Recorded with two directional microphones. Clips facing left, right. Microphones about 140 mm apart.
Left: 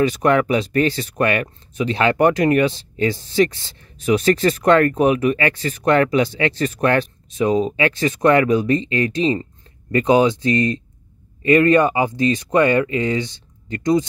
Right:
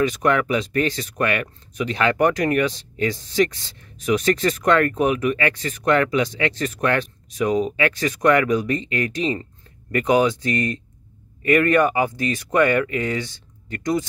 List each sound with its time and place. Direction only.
0.0 s speech: 35° left (ahead or behind)